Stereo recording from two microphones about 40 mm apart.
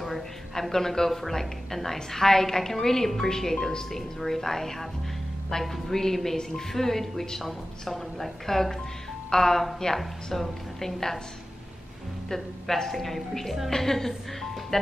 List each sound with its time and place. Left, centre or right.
0.0 s speech: centre
12.3 s speech: centre